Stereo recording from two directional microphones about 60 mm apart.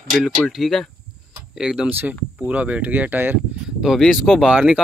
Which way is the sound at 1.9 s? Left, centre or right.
Right.